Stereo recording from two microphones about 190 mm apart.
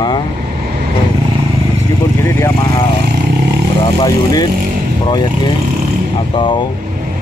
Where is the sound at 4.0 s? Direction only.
20° left (ahead or behind).